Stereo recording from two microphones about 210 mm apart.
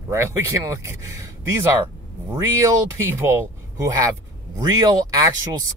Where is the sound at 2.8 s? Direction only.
10° right (ahead or behind).